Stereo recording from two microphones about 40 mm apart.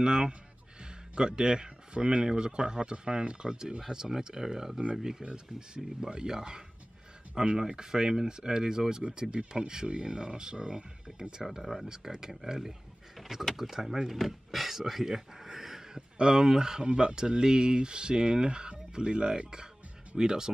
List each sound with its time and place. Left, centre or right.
0.0 s speech: right
5.2 s speech: right
5.9 s speech: centre
11.4 s speech: centre